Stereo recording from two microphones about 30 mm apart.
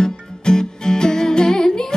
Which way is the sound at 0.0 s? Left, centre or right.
Left.